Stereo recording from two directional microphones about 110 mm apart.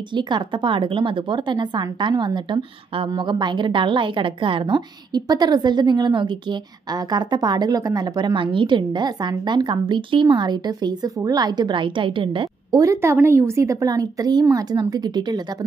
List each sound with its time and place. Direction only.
0.1 s a woman's voice: 45° right (ahead or behind)
12.7 s a woman's voice: 25° right (ahead or behind)